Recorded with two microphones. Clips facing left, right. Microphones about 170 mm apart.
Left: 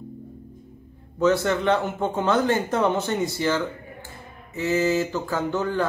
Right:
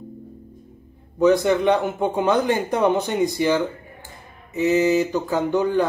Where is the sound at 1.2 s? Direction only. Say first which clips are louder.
Right 4 dB; 15° right (ahead or behind).